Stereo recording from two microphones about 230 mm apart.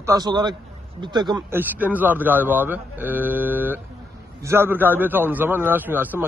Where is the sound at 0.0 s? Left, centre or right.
Centre.